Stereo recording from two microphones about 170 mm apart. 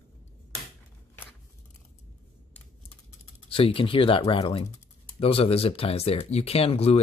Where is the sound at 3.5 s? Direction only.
30° left (ahead or behind).